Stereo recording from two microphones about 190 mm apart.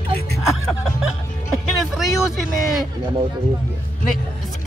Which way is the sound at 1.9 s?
Centre (ahead or behind).